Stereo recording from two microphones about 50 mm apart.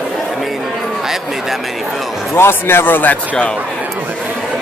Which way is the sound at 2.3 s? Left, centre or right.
Left.